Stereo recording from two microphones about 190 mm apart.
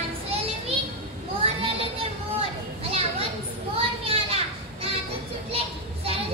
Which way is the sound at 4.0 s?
30° right (ahead or behind).